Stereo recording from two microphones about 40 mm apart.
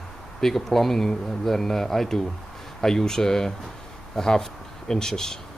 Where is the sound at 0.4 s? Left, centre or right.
Centre.